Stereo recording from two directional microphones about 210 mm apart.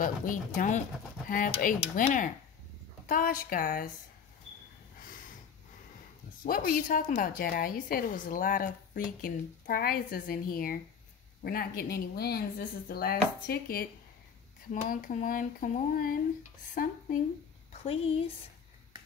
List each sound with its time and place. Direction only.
0.0 s speech: 40° left (ahead or behind)
6.4 s a woman's voice: 45° left (ahead or behind)